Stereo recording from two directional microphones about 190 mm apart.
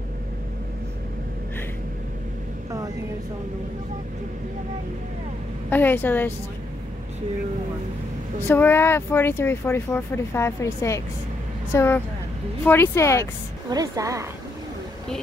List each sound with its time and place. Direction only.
5.7 s speech: 10° left (ahead or behind)
8.5 s speech: 10° left (ahead or behind)
13.7 s a woman's voice: 20° right (ahead or behind)